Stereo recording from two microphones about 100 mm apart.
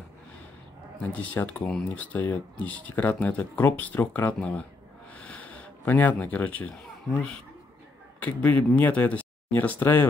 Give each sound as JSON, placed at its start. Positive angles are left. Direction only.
{"t": 1.0, "sound": "speech", "side_deg": 15}